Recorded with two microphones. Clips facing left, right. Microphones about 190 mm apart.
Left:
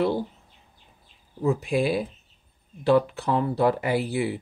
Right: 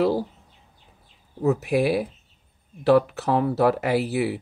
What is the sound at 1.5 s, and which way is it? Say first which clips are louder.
Speech: right 2 dB; 70° right (ahead or behind).